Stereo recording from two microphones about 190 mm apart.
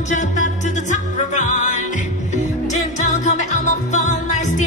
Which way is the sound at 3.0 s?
40° left (ahead or behind).